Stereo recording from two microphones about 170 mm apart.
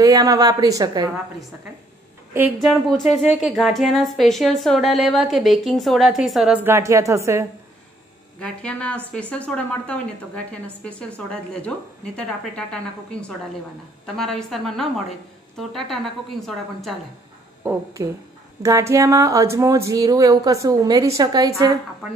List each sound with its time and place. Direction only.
0.0 s speech: 20° right (ahead or behind)
2.6 s speech: centre (ahead or behind); by 7.4 s 15° right (ahead or behind)
8.4 s a woman's voice: 5° left (ahead or behind)
14.0 s speech: centre (ahead or behind)
18.0 s speech: 20° right (ahead or behind)